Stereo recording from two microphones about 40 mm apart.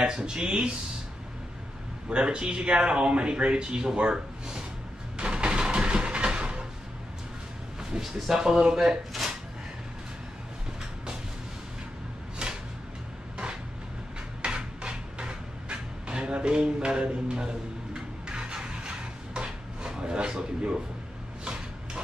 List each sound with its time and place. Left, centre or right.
0.0 s speech: right
2.0 s speech: right
5.1 s music: right
8.1 s speech: centre
8.7 s speech: centre
14.4 s a sound: right
16.3 s speech: right
17.9 s a sound: right